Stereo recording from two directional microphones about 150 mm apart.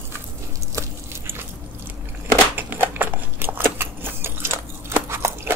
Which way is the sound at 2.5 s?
15° right (ahead or behind).